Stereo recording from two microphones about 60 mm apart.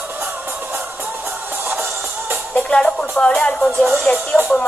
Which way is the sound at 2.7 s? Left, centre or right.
Centre.